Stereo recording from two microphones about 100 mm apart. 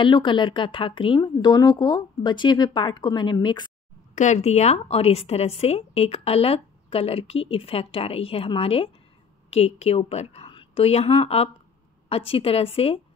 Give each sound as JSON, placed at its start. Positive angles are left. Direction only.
{"t": 0.0, "sound": "speech", "side_deg": 55}
{"t": 1.5, "sound": "speech", "side_deg": 40}
{"t": 4.4, "sound": "a woman's voice", "side_deg": 90}
{"t": 9.5, "sound": "a woman's voice", "side_deg": 90}
{"t": 12.1, "sound": "a woman's voice", "side_deg": 70}